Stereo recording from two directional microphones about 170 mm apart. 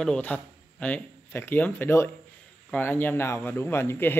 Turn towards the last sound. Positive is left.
turn(degrees=15)  # may be behind; listen again after turning